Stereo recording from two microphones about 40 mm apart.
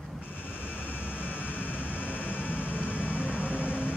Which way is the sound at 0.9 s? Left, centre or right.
Left.